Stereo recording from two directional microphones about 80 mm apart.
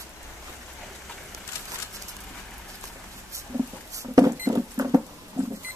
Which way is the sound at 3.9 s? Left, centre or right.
Right.